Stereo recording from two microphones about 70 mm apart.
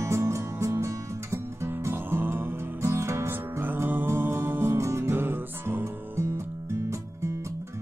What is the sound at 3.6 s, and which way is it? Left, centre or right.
Music, right.